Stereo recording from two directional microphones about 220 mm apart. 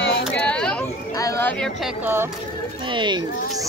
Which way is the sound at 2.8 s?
20° right (ahead or behind).